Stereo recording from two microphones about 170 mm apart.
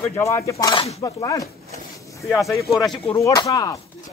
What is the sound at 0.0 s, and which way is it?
Speech, 15° left (ahead or behind).